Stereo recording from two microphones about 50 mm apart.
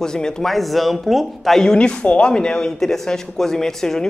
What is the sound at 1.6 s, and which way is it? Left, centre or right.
A man's voice, centre.